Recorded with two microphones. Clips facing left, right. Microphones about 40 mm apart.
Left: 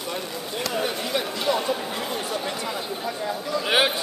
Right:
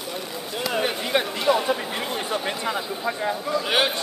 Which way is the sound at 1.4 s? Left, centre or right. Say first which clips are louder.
Right 2 dB; centre.